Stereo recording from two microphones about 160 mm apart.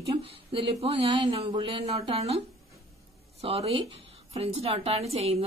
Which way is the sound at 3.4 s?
35° right (ahead or behind).